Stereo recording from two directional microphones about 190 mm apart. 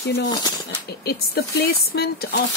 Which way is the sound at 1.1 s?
55° left (ahead or behind).